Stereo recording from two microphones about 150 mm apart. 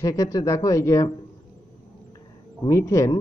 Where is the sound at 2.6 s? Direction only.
20° left (ahead or behind).